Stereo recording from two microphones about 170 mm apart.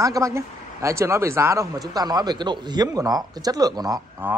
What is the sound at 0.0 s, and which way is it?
A man's voice, 20° right (ahead or behind).